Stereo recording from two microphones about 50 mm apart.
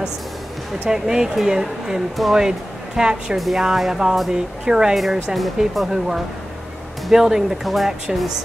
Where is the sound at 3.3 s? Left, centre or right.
Centre.